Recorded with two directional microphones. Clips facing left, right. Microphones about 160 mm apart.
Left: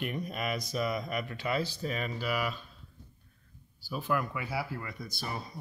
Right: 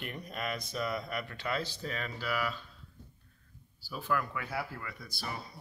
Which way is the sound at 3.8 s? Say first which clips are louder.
Left 2 dB; 15° left (ahead or behind).